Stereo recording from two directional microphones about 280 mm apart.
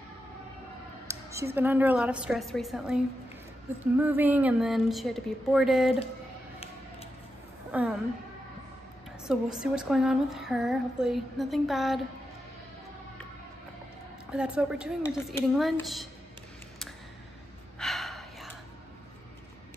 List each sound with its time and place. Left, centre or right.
1.0 s speech: centre
4.0 s speech: centre
7.7 s speech: centre
9.2 s speech: centre
14.3 s speech: centre
17.7 s gasp: centre